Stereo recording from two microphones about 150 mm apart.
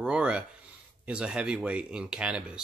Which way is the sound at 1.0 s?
5° right (ahead or behind).